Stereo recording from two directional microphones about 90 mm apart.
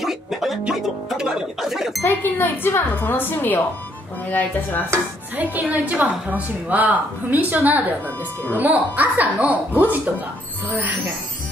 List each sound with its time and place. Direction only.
0.0 s music: centre (ahead or behind)
2.0 s speech: 25° left (ahead or behind)
4.9 s speech: 20° right (ahead or behind)